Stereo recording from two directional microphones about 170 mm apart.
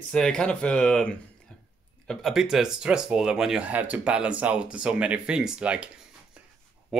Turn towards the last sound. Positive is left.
turn(degrees=-5)  # may be behind; listen again after turning